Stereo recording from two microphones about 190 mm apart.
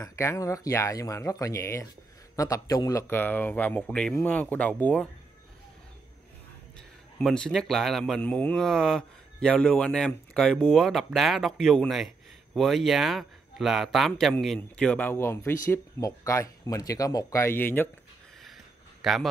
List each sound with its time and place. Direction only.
0.0 s speech: 15° left (ahead or behind)
7.2 s speech: 5° left (ahead or behind)
19.0 s speech: centre (ahead or behind)